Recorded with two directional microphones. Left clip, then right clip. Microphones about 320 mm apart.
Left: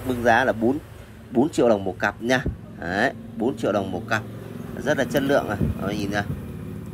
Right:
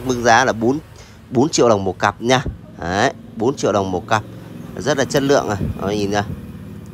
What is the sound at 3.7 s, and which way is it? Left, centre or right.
Speech, left.